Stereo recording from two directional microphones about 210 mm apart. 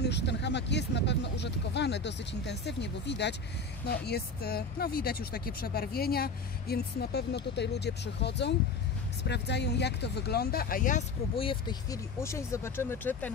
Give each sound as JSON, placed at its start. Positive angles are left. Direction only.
{"t": 0.0, "sound": "speech", "side_deg": 55}